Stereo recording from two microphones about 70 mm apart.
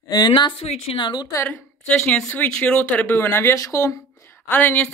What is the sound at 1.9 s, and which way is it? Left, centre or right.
A woman's voice, centre.